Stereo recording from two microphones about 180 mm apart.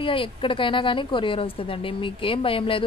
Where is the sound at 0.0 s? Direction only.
30° left (ahead or behind).